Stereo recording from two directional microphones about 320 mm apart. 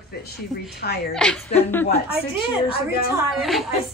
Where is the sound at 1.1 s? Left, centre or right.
Centre.